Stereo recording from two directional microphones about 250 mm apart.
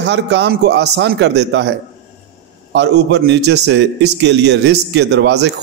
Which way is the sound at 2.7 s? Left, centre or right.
Right.